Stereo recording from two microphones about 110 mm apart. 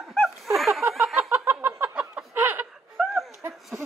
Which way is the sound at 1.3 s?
20° right (ahead or behind).